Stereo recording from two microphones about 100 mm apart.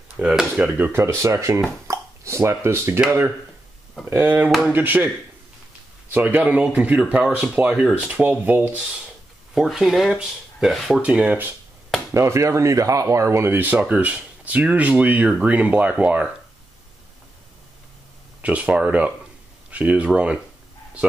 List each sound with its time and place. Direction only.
0.2 s speech: 10° right (ahead or behind)
0.8 s speech: 25° right (ahead or behind)
4.1 s speech: 20° right (ahead or behind)
9.5 s speech: 5° right (ahead or behind)
11.0 s speech: 15° right (ahead or behind)
12.1 s speech: 30° right (ahead or behind)
18.4 s speech: 15° right (ahead or behind)